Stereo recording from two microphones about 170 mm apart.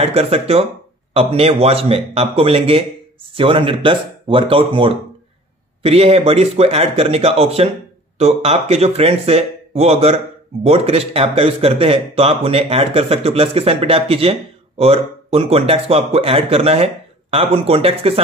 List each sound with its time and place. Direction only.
0.0 s speech: 35° right (ahead or behind)